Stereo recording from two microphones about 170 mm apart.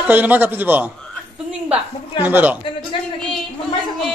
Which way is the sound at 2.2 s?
10° right (ahead or behind).